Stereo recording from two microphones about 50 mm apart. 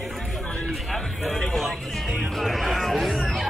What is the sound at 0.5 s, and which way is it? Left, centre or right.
Music, centre.